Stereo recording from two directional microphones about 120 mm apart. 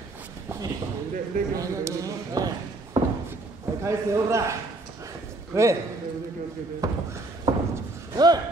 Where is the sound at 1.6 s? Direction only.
25° right (ahead or behind).